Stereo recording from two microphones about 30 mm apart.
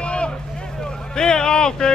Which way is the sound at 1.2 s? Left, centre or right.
Left.